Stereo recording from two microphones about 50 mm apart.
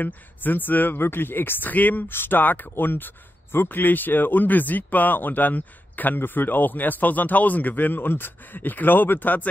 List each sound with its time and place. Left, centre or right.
0.0 s speech: left